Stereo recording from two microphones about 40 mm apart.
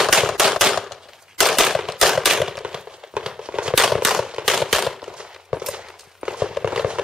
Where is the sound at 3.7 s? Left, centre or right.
Centre.